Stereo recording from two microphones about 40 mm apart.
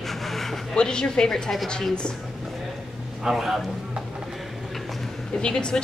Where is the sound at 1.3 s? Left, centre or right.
Centre.